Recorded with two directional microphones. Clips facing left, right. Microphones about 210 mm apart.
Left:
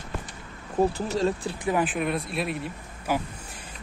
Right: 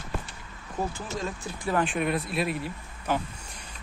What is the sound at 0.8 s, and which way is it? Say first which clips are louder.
Speech: left 8 dB; 35° left (ahead or behind).